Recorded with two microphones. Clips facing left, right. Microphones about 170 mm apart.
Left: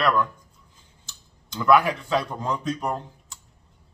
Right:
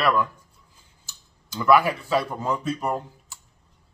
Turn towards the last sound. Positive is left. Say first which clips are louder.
# right 2 dB
turn(degrees=-5)  # may be behind; listen again after turning